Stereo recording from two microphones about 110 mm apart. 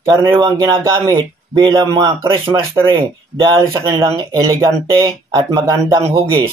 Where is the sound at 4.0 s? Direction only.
45° right (ahead or behind).